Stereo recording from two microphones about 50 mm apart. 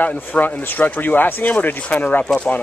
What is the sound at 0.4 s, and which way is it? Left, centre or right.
Speech, left.